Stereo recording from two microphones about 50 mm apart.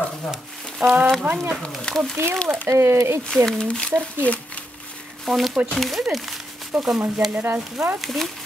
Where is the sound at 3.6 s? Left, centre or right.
Left.